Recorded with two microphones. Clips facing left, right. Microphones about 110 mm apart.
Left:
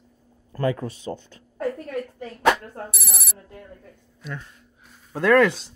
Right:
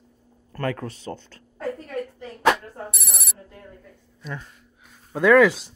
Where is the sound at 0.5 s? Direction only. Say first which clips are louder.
Left 3 dB; 15° left (ahead or behind).